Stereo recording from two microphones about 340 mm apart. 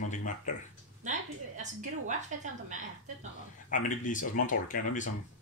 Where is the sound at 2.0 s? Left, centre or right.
Right.